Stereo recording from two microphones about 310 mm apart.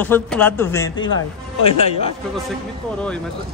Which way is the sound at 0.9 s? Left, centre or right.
Left.